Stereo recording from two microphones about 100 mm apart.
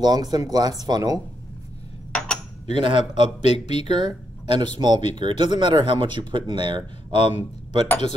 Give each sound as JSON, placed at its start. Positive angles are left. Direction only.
{"t": 0.0, "sound": "speech", "side_deg": -40}
{"t": 2.1, "sound": "cutlery", "side_deg": 10}
{"t": 2.6, "sound": "speech", "side_deg": -55}